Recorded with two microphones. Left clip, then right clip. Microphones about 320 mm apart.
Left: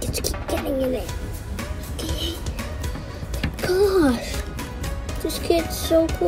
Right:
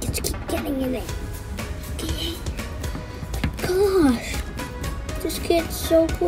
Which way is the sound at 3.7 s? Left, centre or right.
Centre.